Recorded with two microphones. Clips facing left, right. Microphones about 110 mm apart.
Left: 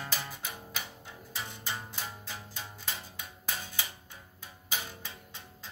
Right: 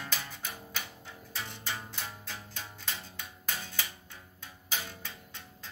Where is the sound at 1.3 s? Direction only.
10° left (ahead or behind).